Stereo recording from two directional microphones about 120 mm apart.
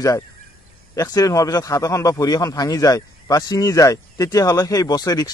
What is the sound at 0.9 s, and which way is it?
Speech, 30° left (ahead or behind).